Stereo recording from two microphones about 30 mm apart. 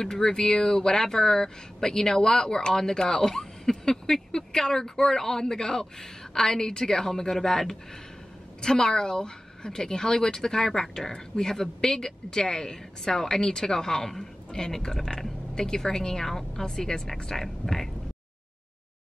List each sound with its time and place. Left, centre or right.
0.0 s a woman's voice: centre